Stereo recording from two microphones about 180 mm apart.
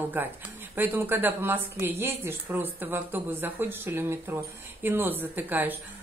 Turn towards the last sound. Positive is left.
turn(degrees=-10)  # may be behind; listen again after turning